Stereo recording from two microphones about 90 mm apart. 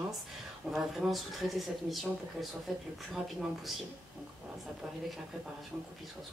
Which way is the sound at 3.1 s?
Centre (ahead or behind).